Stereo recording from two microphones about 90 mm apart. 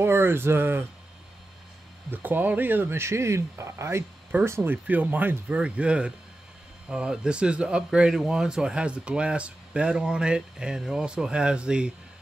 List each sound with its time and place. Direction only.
0.0 s speech: 25° right (ahead or behind)
2.0 s speech: 20° right (ahead or behind)
4.8 s speech: 20° right (ahead or behind)